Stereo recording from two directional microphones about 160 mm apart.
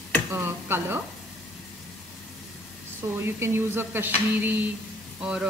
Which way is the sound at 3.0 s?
15° right (ahead or behind).